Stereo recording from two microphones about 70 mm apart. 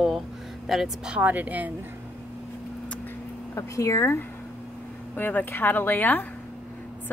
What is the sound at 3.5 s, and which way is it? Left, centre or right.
Speech, left.